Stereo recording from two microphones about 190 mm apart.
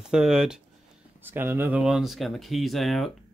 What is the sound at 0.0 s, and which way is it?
Speech, 5° right (ahead or behind).